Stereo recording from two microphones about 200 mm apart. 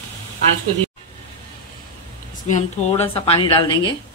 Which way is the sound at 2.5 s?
30° left (ahead or behind).